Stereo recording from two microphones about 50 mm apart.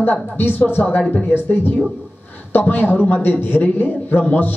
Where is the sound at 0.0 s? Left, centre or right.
Left.